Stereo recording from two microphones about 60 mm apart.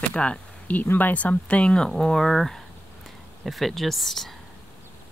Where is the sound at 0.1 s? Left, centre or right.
Centre.